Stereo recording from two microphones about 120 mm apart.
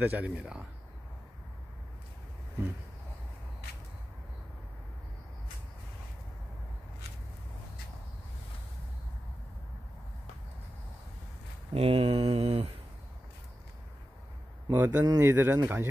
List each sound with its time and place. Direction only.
0.0 s speech: 10° right (ahead or behind)
11.7 s a sound: 55° right (ahead or behind)
14.7 s speech: 20° right (ahead or behind)